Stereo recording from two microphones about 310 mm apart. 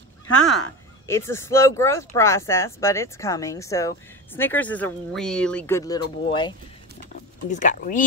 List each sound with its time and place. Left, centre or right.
1.0 s speech: centre; by 7.9 s left